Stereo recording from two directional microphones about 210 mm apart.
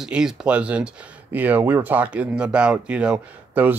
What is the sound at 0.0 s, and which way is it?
Speech, 5° right (ahead or behind).